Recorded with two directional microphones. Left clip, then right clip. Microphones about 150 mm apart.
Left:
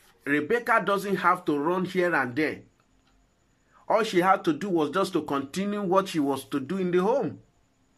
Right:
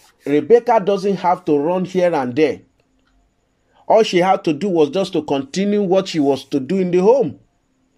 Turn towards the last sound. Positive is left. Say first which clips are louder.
# right 11 dB
turn(degrees=-25)  # may be behind; listen again after turning